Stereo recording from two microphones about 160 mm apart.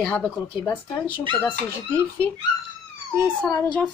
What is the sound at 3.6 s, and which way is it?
Speech, 10° left (ahead or behind).